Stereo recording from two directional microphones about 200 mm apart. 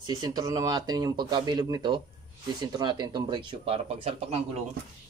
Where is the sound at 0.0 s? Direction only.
20° right (ahead or behind).